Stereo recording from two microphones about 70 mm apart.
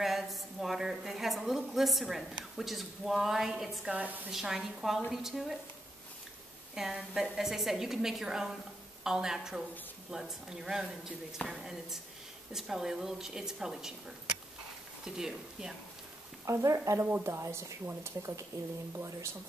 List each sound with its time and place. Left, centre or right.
0.0 s a woman's voice: centre
3.9 s a woman's voice: right
4.3 s a woman's voice: centre
6.7 s a woman's voice: centre
15.0 s a woman's voice: centre
16.4 s speech: right
17.0 s speech: right
17.3 s speech: right